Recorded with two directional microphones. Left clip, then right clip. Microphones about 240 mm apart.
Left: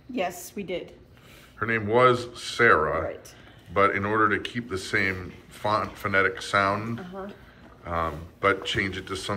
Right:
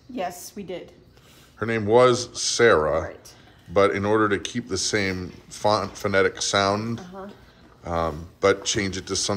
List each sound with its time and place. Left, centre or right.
0.1 s a woman's voice: centre
1.6 s speech: right
7.1 s speech: centre
7.8 s speech: right